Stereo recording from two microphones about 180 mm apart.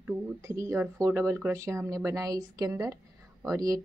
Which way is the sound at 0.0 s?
15° right (ahead or behind).